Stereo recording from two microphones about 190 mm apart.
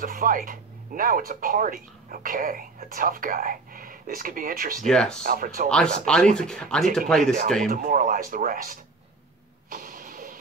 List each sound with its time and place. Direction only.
0.0 s speech: 50° right (ahead or behind)
4.8 s speech: 5° left (ahead or behind)
5.2 s speech: 50° right (ahead or behind)
5.7 s speech: 5° left (ahead or behind)
7.6 s speech: 50° right (ahead or behind)
9.7 s vehicle: 45° right (ahead or behind)